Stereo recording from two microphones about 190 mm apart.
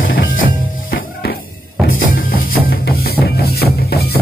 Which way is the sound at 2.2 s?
50° left (ahead or behind).